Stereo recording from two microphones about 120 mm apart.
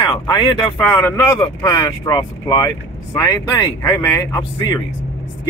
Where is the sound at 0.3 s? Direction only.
40° left (ahead or behind).